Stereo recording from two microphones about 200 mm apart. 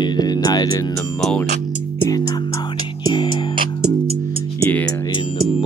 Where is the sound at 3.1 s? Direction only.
20° left (ahead or behind).